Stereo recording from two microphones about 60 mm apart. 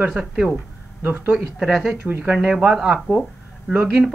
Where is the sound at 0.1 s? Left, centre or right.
Centre.